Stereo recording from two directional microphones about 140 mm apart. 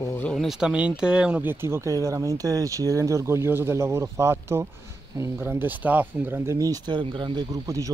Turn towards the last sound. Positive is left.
turn(degrees=-25)  # may be behind; listen again after turning